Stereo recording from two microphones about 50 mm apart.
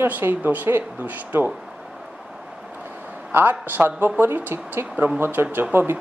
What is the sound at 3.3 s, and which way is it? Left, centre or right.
Speech, right.